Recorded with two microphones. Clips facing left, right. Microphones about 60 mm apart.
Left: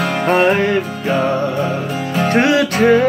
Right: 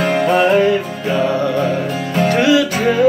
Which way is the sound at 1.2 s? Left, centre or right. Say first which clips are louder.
Right 1 dB; left.